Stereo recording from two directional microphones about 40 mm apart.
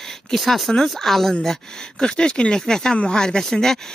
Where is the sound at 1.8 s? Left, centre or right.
Left.